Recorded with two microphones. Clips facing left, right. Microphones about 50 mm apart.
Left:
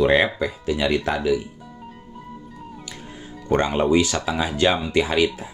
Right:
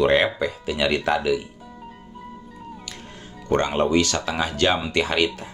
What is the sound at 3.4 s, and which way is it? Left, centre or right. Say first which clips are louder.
Speech: left 1 dB; centre.